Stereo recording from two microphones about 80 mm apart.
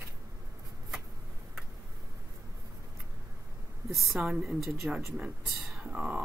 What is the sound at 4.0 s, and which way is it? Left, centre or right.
A woman's voice, centre.